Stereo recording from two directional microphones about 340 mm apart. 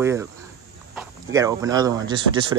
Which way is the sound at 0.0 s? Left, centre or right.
Centre.